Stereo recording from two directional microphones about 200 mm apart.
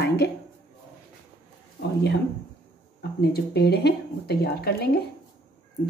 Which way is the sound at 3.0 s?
55° left (ahead or behind).